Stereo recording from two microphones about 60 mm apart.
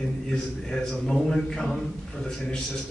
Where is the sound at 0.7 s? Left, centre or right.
Centre.